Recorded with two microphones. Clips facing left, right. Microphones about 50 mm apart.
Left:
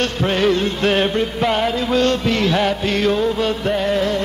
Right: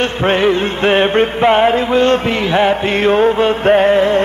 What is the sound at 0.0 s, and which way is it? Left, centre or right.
Music, right.